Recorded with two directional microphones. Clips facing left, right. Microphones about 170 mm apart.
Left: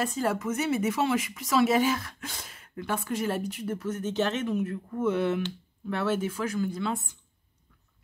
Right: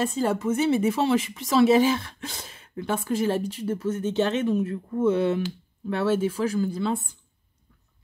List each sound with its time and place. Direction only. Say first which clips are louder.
0.0 s speech: right 4 dB; 25° right (ahead or behind)